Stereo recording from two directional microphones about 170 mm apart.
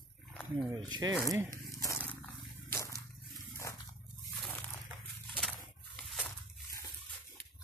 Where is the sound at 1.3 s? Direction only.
20° right (ahead or behind).